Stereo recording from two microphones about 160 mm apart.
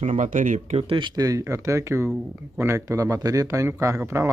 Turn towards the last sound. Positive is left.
turn(degrees=-15)  # may be behind; listen again after turning